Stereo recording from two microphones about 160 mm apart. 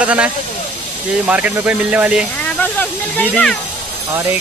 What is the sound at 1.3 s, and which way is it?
Speech, 10° right (ahead or behind).